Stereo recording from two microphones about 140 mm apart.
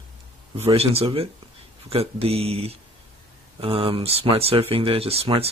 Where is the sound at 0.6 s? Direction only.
45° right (ahead or behind).